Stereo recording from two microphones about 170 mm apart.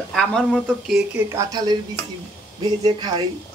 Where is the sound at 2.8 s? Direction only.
25° right (ahead or behind).